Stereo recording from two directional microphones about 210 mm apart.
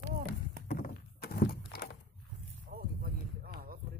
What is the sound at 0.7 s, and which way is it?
Thunk, 45° left (ahead or behind).